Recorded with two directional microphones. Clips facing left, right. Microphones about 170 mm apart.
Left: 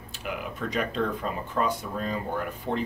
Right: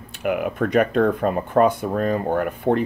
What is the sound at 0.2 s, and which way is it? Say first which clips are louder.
Speech: right 11 dB; 55° right (ahead or behind).